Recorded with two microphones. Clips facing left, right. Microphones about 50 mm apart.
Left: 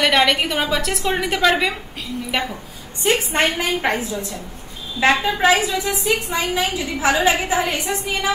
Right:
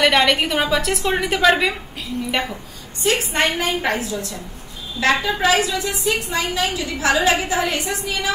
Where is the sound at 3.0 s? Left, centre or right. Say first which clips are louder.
Left 1 dB; left.